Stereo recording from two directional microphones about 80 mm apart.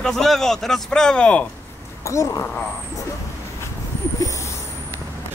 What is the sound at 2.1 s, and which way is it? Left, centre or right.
Speech, left.